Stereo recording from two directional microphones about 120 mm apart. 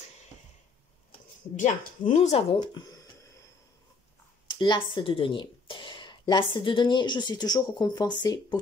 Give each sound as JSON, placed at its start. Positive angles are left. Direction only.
{"t": 1.6, "sound": "speech", "side_deg": 85}
{"t": 2.7, "sound": "speech", "side_deg": 30}
{"t": 4.5, "sound": "speech", "side_deg": 40}